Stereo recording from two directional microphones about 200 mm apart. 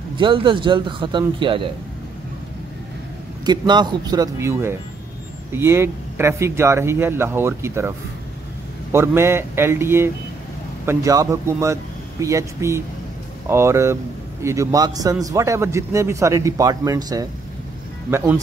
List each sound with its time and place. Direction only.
0.2 s a man's voice: 25° right (ahead or behind)
3.4 s a man's voice: 20° right (ahead or behind)
8.9 s speech: 10° right (ahead or behind)